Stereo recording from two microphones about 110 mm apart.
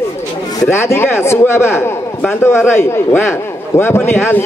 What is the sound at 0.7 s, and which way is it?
A man's voice, 25° left (ahead or behind).